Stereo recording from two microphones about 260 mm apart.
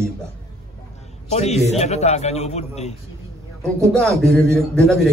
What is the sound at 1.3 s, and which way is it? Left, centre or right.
A man's voice, left.